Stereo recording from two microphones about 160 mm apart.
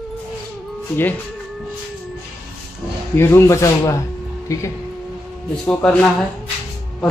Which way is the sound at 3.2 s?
15° left (ahead or behind).